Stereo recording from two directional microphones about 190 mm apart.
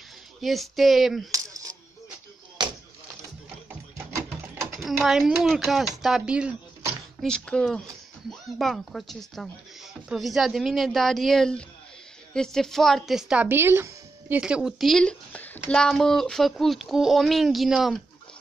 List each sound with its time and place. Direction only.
0.4 s speech: centre (ahead or behind)
1.3 s coin: 15° right (ahead or behind)
4.8 s speech: centre (ahead or behind)